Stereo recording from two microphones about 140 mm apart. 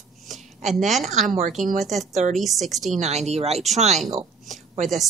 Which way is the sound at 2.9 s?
50° right (ahead or behind).